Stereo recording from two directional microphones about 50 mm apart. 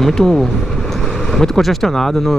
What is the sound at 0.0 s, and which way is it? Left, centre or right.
Speech, centre.